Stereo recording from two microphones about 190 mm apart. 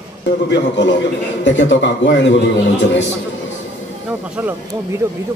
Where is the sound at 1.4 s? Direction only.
70° left (ahead or behind).